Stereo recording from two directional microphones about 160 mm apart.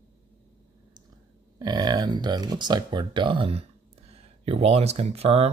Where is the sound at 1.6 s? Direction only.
25° right (ahead or behind).